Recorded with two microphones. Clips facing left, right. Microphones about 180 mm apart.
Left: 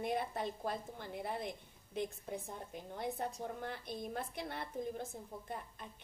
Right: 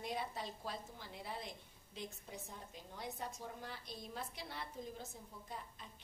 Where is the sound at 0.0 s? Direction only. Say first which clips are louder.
Left 6 dB; 55° left (ahead or behind).